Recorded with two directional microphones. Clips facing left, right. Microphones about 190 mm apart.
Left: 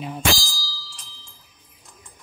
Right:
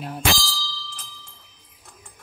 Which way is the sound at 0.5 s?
60° right (ahead or behind).